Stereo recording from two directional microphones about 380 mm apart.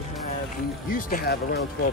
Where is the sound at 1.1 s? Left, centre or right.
Left.